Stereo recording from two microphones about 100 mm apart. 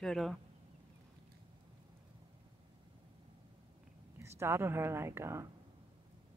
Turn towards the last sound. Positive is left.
turn(degrees=-25)  # may be behind; listen again after turning